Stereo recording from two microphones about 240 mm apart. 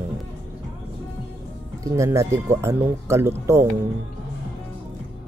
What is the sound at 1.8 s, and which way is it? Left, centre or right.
Speech, centre.